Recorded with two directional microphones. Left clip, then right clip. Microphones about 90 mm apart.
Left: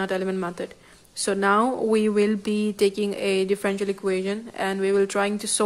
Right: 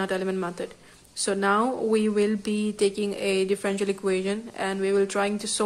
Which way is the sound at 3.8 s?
10° left (ahead or behind).